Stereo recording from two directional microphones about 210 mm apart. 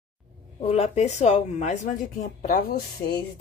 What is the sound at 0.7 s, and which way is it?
Speech, 30° left (ahead or behind).